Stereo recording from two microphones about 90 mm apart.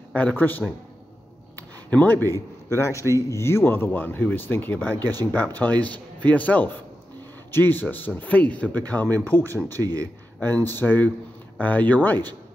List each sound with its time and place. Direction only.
0.1 s speech: 15° left (ahead or behind)
1.9 s speech: 20° left (ahead or behind)
2.3 s a man's voice: 35° left (ahead or behind)
9.7 s a man's voice: 45° right (ahead or behind)
10.4 s speech: 20° left (ahead or behind)